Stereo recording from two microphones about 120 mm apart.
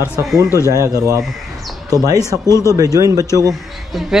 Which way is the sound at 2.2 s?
25° left (ahead or behind).